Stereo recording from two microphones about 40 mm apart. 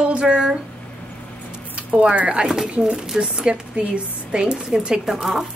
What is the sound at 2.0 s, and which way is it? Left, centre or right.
Speech, right.